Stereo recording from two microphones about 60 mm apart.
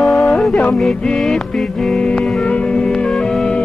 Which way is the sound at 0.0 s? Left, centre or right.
Centre.